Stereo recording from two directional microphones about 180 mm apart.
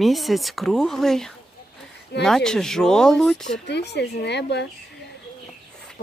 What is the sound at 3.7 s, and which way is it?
Speech, 70° left (ahead or behind).